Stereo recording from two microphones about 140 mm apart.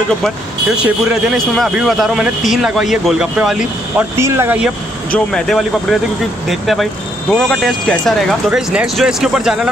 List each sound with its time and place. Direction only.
0.7 s speech: 5° right (ahead or behind)
4.2 s speech: 20° right (ahead or behind)
5.1 s speech: 5° left (ahead or behind)